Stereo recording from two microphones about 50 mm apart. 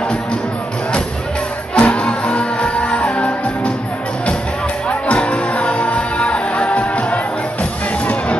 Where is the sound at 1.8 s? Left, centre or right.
Left.